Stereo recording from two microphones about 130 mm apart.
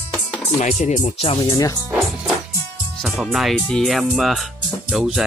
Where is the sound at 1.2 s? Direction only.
40° left (ahead or behind).